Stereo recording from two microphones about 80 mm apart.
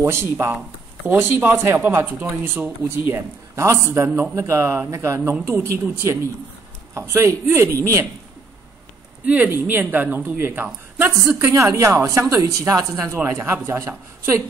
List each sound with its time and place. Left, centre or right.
0.0 s a woman's voice: right
9.2 s a woman's voice: right
13.1 s a woman's voice: right